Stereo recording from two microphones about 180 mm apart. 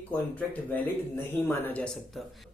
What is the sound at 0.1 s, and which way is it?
Speech, 10° left (ahead or behind).